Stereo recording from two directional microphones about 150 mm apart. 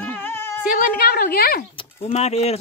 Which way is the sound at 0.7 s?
90° left.